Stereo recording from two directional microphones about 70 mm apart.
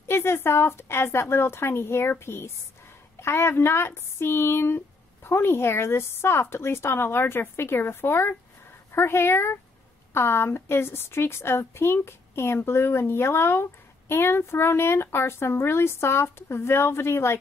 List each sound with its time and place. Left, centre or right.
0.1 s a woman's voice: left